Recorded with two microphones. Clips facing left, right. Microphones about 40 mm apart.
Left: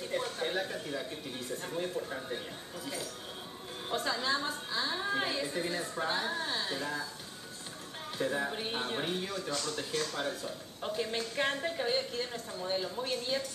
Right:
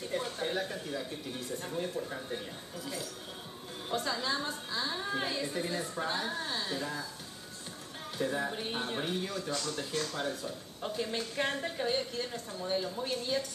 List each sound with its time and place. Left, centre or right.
0.1 s speech: centre
8.2 s speech: centre